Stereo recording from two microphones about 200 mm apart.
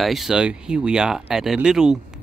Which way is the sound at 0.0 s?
Centre (ahead or behind).